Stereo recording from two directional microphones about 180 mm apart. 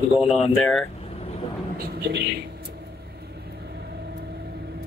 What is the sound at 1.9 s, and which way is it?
Speech, 60° right (ahead or behind).